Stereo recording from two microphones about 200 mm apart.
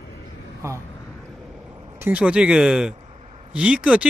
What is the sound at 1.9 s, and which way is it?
Speech, 10° right (ahead or behind).